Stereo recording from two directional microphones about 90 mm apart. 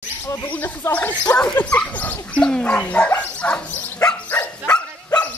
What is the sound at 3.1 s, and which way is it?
Dog, 15° left (ahead or behind).